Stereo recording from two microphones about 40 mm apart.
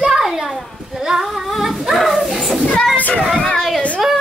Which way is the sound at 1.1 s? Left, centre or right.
Centre.